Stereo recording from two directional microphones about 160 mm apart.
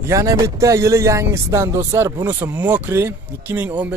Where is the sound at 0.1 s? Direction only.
20° right (ahead or behind).